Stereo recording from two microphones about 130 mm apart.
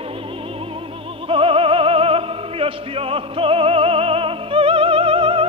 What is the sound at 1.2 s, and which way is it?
Opera, 45° right (ahead or behind).